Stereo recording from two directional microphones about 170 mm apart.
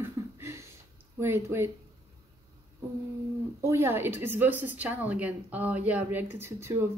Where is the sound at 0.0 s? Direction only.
15° right (ahead or behind).